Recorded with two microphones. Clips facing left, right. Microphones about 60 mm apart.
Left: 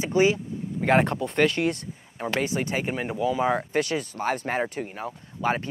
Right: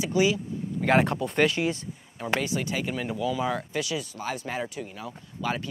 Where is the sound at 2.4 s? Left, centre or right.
Left.